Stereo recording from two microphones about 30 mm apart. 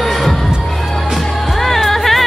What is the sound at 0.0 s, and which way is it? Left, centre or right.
Music, centre.